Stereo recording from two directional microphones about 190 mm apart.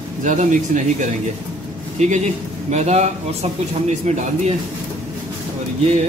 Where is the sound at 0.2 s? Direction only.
40° right (ahead or behind).